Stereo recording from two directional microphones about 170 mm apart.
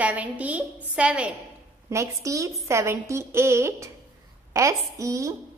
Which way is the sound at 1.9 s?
20° right (ahead or behind).